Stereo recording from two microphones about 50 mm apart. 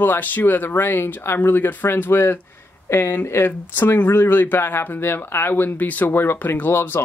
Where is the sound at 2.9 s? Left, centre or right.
Left.